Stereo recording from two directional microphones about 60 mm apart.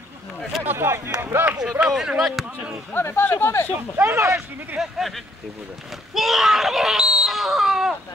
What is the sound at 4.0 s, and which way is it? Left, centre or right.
Speech, right.